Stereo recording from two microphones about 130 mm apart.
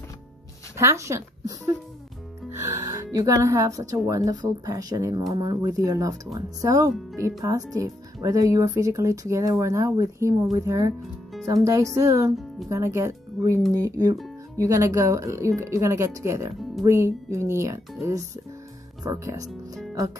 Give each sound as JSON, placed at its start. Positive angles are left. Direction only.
{"t": 0.7, "sound": "speech", "side_deg": -20}
{"t": 2.5, "sound": "speech", "side_deg": -20}